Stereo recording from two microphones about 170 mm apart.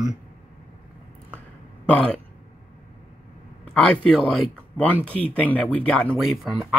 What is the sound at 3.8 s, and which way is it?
Speech, 5° left (ahead or behind).